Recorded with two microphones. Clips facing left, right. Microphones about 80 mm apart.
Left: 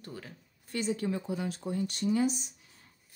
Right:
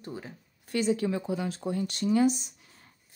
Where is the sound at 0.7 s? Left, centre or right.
Right.